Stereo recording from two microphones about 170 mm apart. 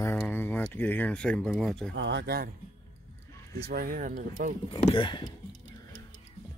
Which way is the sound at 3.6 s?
60° right (ahead or behind).